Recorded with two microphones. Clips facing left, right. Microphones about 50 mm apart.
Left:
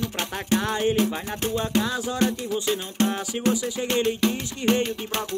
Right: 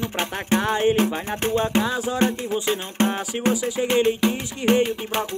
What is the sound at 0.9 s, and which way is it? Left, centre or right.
Music, right.